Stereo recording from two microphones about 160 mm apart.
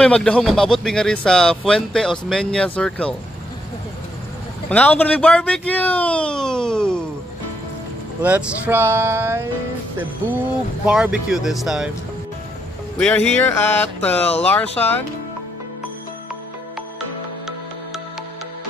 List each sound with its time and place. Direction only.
0.0 s speech: 5° left (ahead or behind)
4.6 s speech: 10° left (ahead or behind)
8.2 s speech: 10° right (ahead or behind)
10.9 s speech: 5° right (ahead or behind)
13.0 s speech: 10° left (ahead or behind)